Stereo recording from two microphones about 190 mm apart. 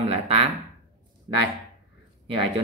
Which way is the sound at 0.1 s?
35° right (ahead or behind).